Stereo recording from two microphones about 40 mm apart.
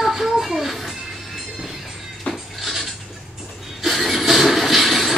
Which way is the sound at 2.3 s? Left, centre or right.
Left.